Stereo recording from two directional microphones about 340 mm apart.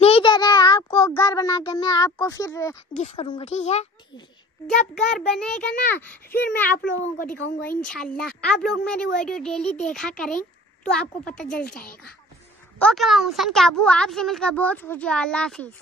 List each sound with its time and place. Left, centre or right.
0.0 s a child's voice: centre
4.6 s speech: centre
7.0 s a child's voice: left
7.6 s speech: centre